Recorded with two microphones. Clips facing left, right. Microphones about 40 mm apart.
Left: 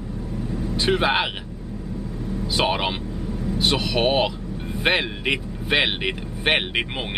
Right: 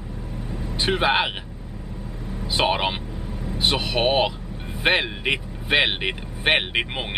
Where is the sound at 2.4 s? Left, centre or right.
Centre.